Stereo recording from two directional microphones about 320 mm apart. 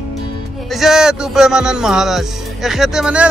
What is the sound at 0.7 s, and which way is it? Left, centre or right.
Speech, centre.